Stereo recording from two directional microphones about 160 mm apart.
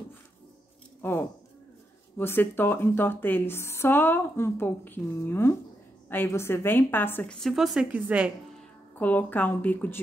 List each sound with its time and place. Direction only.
1.0 s speech: 10° left (ahead or behind); by 8.3 s 5° right (ahead or behind)
8.9 s speech: 10° left (ahead or behind)